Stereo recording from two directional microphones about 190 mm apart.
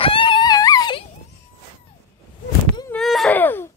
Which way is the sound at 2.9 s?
Centre (ahead or behind).